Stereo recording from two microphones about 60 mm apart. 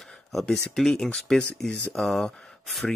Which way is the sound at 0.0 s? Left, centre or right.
Centre.